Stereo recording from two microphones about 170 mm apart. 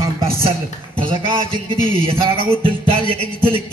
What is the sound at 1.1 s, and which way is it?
Music, 30° right (ahead or behind).